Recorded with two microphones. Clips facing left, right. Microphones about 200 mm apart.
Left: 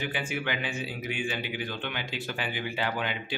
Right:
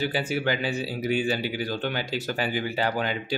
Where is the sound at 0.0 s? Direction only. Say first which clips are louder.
Right 6 dB; 35° right (ahead or behind).